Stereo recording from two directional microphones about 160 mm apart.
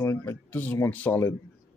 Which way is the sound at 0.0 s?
20° left (ahead or behind).